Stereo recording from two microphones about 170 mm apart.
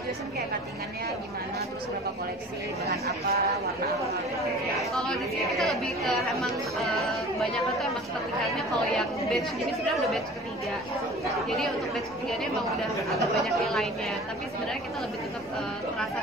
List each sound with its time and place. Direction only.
3.3 s speech: 65° right (ahead or behind)
4.7 s a woman's voice: centre (ahead or behind)
13.1 s a woman's voice: centre (ahead or behind)